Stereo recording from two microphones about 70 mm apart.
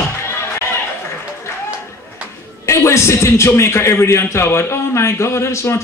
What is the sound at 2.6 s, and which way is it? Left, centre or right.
A man's voice, left.